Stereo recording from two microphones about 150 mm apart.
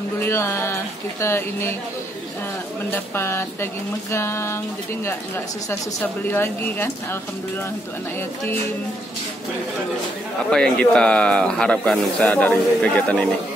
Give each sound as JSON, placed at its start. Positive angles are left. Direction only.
{"t": 0.2, "sound": "speech", "side_deg": 15}
{"t": 2.9, "sound": "speech", "side_deg": 15}
{"t": 5.7, "sound": "speech", "side_deg": 15}
{"t": 10.5, "sound": "speech", "side_deg": 5}